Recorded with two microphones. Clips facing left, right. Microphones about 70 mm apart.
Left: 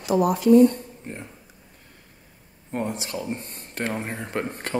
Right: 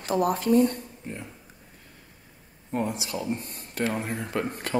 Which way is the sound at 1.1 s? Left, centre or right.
Left.